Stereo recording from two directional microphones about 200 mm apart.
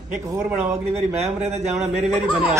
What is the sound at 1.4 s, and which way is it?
Speech, 35° right (ahead or behind).